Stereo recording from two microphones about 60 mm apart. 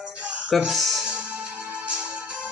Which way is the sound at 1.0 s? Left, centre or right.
Right.